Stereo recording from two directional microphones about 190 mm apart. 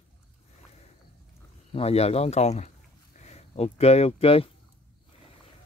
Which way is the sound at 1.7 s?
35° left (ahead or behind).